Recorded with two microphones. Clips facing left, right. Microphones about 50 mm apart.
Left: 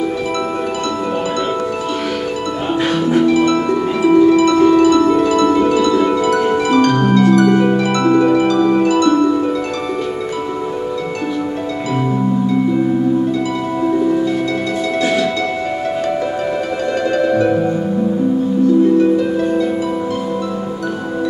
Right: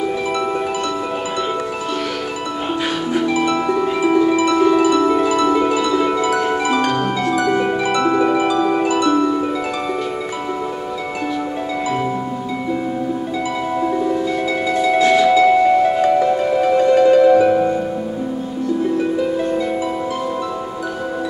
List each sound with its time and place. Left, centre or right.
3.1 s music: centre
13.8 s harp: centre
14.9 s music: centre
18.9 s harp: centre